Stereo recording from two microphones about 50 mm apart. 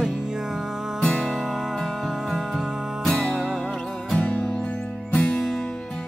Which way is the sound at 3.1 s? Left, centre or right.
Left.